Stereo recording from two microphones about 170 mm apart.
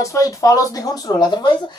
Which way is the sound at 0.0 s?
20° left (ahead or behind).